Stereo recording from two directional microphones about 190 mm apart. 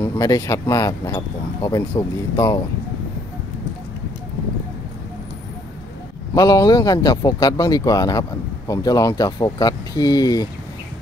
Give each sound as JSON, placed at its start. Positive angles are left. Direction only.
{"t": 0.0, "sound": "speech", "side_deg": 20}
{"t": 6.3, "sound": "speech", "side_deg": 20}